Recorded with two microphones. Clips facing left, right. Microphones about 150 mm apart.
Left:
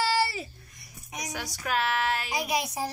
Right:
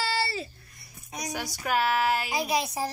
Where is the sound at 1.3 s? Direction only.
Centre (ahead or behind).